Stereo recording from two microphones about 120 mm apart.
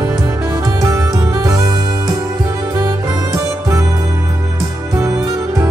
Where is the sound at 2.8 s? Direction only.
25° right (ahead or behind).